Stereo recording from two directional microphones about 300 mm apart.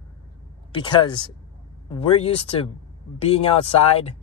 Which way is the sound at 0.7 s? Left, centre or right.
Centre.